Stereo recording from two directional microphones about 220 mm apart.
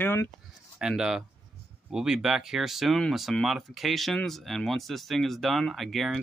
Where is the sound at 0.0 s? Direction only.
10° left (ahead or behind).